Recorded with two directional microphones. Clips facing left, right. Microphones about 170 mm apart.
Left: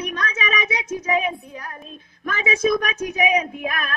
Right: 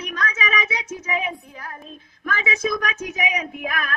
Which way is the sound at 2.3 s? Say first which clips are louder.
Left 4 dB; 25° left (ahead or behind).